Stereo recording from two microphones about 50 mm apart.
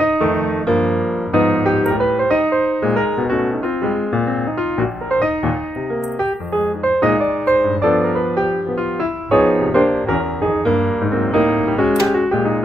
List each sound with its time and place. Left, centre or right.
0.0 s music: left
1.5 s music: centre
2.2 s music: centre
6.9 s music: centre
11.8 s music: centre